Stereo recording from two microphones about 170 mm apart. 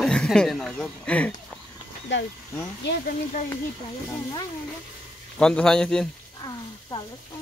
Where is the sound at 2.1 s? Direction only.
90° left.